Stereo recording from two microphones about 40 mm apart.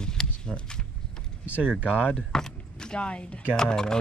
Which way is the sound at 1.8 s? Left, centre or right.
Right.